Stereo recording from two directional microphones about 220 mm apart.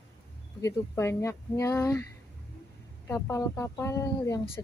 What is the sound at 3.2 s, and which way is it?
A woman's voice, 10° left (ahead or behind).